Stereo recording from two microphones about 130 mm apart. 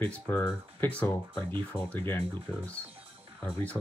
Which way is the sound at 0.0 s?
15° left (ahead or behind).